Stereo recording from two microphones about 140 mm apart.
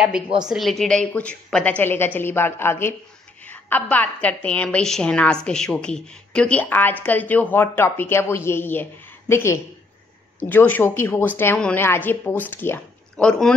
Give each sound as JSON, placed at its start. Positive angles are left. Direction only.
{"t": 0.4, "sound": "a woman's voice", "side_deg": 0}